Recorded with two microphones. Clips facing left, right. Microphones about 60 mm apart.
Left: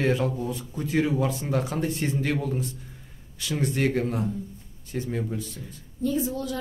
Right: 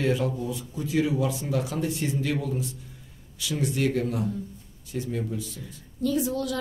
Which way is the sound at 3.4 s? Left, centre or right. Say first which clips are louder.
Left 1 dB; left.